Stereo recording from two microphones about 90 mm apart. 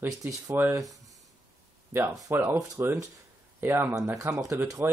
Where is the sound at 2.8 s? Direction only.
25° right (ahead or behind).